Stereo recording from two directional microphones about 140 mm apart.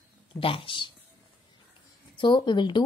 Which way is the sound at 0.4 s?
40° left (ahead or behind).